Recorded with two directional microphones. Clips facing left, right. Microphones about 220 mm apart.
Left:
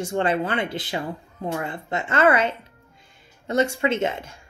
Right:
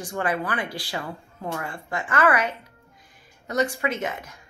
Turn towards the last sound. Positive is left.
turn(degrees=25)  # may be behind; listen again after turning